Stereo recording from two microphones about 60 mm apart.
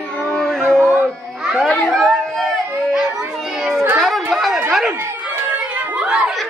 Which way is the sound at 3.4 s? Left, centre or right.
Centre.